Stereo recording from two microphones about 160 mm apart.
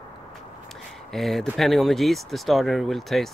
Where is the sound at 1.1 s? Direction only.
Centre (ahead or behind).